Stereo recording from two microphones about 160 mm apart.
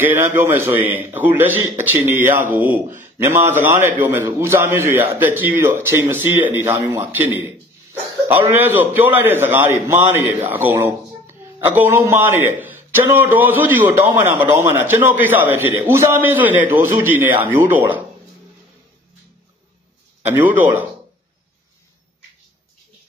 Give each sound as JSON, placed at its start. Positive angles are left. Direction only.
{"t": 0.0, "sound": "speech", "side_deg": -15}
{"t": 20.2, "sound": "speech", "side_deg": -10}